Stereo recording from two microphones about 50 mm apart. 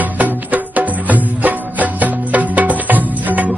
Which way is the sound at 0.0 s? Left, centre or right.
Right.